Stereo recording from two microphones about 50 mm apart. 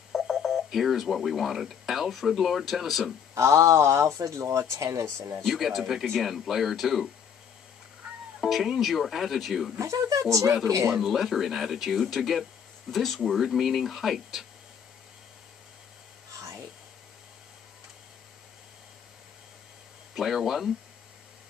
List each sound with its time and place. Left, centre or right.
0.1 s speech: centre
3.3 s speech: right
5.5 s speech: centre
8.0 s music: right
8.4 s speech: centre
9.8 s speech: right
10.4 s speech: centre
20.2 s speech: centre